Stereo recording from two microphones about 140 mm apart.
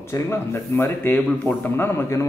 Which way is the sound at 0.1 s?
20° left (ahead or behind).